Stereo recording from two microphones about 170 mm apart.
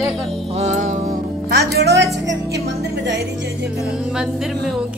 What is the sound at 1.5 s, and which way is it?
Music, 70° right (ahead or behind).